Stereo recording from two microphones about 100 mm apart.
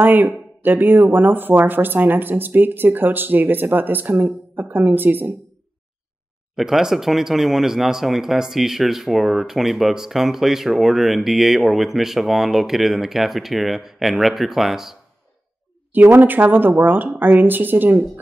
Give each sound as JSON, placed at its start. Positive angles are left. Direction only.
{"t": 0.0, "sound": "speech", "side_deg": -20}
{"t": 6.5, "sound": "speech", "side_deg": -5}
{"t": 15.9, "sound": "speech", "side_deg": -15}